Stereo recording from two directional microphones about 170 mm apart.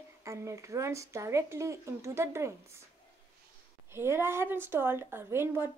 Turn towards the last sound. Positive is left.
turn(degrees=-15)  # may be behind; listen again after turning